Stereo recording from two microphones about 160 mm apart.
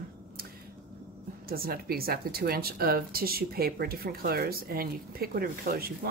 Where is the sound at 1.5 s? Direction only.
70° right (ahead or behind).